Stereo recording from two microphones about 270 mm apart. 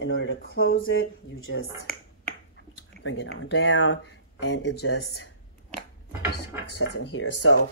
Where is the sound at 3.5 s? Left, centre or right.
Left.